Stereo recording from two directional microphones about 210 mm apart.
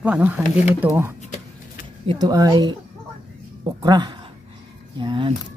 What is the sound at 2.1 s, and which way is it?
Speech, 20° right (ahead or behind).